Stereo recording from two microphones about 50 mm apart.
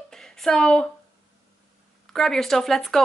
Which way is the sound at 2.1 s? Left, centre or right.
Centre.